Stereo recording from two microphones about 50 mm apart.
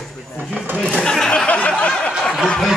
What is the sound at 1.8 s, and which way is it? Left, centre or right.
Snicker, left.